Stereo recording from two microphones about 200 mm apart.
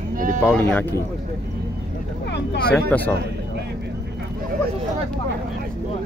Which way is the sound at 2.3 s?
55° left (ahead or behind).